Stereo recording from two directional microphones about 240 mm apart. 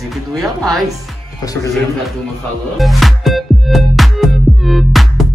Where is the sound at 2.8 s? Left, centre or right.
Centre.